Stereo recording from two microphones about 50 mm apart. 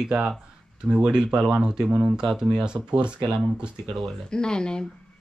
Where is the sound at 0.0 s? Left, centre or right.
Centre.